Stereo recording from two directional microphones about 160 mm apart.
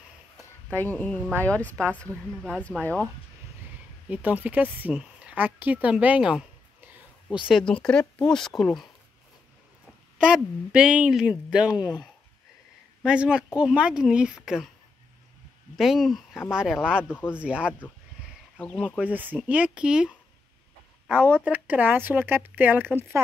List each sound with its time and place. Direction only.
0.7 s speech: 10° left (ahead or behind)
4.1 s speech: 10° right (ahead or behind)
7.4 s speech: 5° left (ahead or behind)
10.1 s speech: 5° right (ahead or behind)
11.7 s speech: 25° left (ahead or behind)
13.0 s speech: 5° right (ahead or behind)
15.7 s speech: centre (ahead or behind)
17.1 s speech: 15° left (ahead or behind)
17.4 s speech: 5° right (ahead or behind)
18.9 s speech: 10° right (ahead or behind)
21.1 s speech: 10° right (ahead or behind)